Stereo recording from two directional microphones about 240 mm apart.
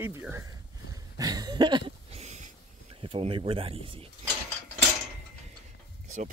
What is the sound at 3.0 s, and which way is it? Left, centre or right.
Speech, right.